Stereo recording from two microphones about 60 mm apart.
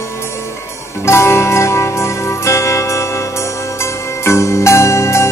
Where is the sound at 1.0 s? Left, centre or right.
Left.